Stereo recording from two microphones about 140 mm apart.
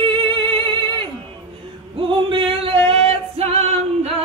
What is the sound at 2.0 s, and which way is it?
Singing, 35° right (ahead or behind).